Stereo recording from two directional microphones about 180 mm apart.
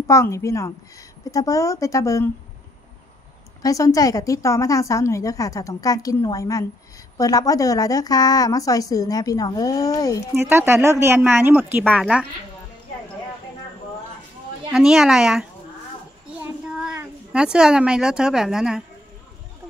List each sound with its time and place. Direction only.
0.0 s a woman's voice: 15° left (ahead or behind)
3.6 s a woman's voice: 20° left (ahead or behind)
10.3 s speech: 15° right (ahead or behind)
14.7 s a woman's voice: 5° right (ahead or behind)
16.3 s a sound: 5° right (ahead or behind)